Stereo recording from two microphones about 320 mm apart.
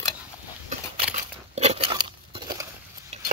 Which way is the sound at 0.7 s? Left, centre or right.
Right.